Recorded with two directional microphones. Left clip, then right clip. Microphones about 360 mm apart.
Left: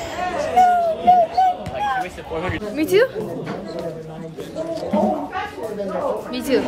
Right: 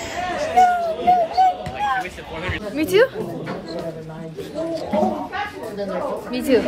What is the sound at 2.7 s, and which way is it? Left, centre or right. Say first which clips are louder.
Speech: even; centre.